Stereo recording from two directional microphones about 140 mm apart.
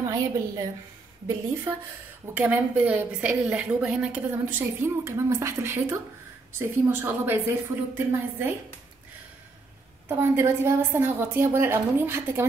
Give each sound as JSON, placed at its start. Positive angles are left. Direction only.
{"t": 0.0, "sound": "a woman's voice", "side_deg": -25}
{"t": 10.0, "sound": "a woman's voice", "side_deg": -15}